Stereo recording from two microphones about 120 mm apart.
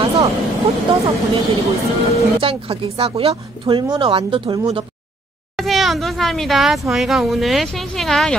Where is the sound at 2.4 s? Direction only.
50° right (ahead or behind).